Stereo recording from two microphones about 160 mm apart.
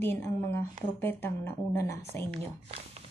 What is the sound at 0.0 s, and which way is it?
A woman's voice, 15° left (ahead or behind).